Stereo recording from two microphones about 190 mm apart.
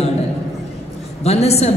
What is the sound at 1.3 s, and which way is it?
Speech, 35° left (ahead or behind).